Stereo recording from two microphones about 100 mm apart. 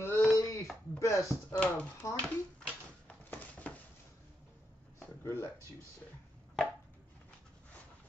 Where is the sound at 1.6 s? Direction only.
15° left (ahead or behind).